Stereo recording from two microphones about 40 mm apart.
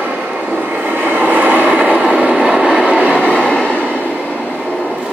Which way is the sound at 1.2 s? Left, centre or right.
Right.